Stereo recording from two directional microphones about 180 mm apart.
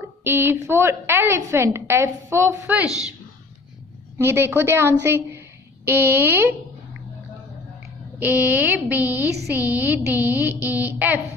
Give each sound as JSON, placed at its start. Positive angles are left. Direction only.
{"t": 0.2, "sound": "a woman's voice", "side_deg": -15}
{"t": 4.2, "sound": "a woman's voice", "side_deg": -15}
{"t": 8.2, "sound": "a woman's voice", "side_deg": -10}